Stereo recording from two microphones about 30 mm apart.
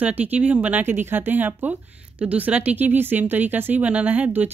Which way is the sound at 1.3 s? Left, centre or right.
Right.